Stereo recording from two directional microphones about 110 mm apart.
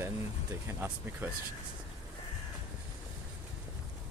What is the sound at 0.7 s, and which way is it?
Speech, 20° right (ahead or behind).